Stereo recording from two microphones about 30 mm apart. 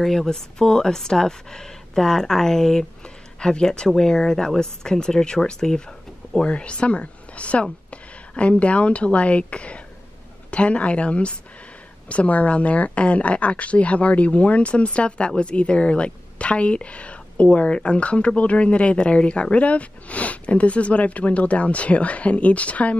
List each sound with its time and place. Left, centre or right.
0.0 s speech: centre
0.6 s speech: centre
3.3 s speech: left
6.4 s a woman's voice: left